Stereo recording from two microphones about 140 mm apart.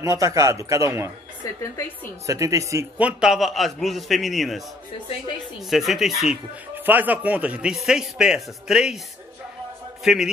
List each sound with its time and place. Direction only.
0.0 s a man's voice: 25° right (ahead or behind)
2.2 s a man's voice: 20° right (ahead or behind)
3.0 s a man's voice: 5° right (ahead or behind)
5.7 s a man's voice: centre (ahead or behind)
6.7 s a man's voice: 15° right (ahead or behind)
10.0 s a man's voice: 5° right (ahead or behind)